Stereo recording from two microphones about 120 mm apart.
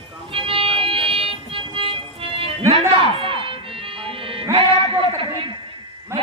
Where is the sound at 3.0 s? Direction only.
50° right (ahead or behind).